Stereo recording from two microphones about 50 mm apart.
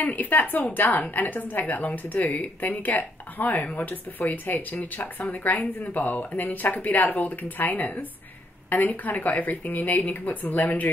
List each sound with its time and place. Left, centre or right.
0.0 s speech: left